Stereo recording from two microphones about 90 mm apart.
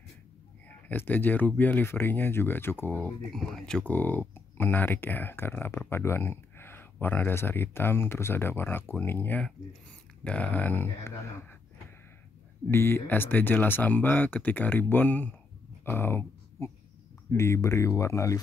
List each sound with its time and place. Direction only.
0.7 s speech: 20° left (ahead or behind)
3.3 s speech: 5° left (ahead or behind)
3.9 s speech: 20° left (ahead or behind)
12.7 s speech: 25° left (ahead or behind)